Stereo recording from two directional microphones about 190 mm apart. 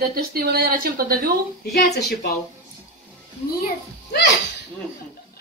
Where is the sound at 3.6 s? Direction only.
55° left (ahead or behind).